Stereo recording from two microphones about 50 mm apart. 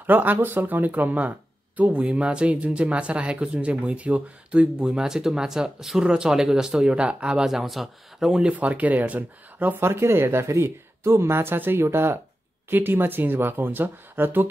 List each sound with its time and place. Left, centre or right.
0.0 s speech: right
2.0 s speech: right
8.5 s speech: right
9.8 s speech: right
12.6 s speech: right